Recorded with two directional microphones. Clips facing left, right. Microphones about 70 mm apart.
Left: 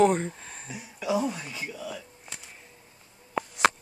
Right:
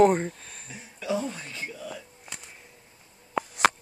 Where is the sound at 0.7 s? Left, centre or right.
Centre.